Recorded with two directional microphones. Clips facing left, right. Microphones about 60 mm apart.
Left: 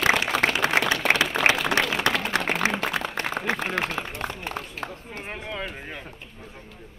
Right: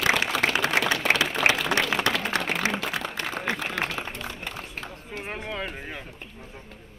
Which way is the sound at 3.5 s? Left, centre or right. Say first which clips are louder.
Left 2 dB; left.